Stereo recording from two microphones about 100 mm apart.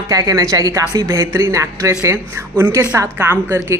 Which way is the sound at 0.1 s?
35° right (ahead or behind).